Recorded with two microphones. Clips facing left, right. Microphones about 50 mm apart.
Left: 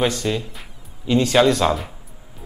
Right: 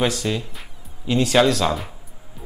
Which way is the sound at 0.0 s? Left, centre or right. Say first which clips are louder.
Left 1 dB; centre.